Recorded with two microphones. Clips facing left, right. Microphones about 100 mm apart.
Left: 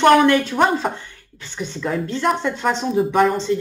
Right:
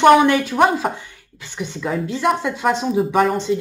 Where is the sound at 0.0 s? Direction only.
10° right (ahead or behind).